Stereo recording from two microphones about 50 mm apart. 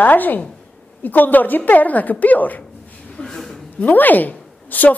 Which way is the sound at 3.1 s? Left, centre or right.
Centre.